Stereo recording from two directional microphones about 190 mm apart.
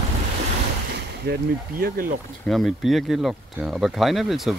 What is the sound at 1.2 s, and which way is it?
Speech, 60° right (ahead or behind).